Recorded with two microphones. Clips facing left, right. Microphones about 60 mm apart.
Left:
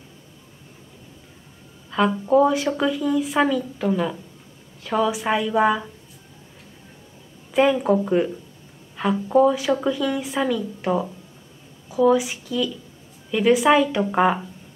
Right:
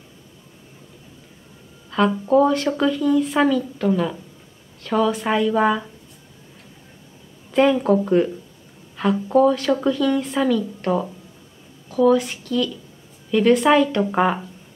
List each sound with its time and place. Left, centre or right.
1.9 s speech: centre
7.5 s a woman's voice: centre